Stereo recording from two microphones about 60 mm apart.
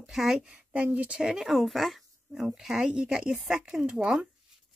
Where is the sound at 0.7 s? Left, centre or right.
Right; by 4.2 s centre.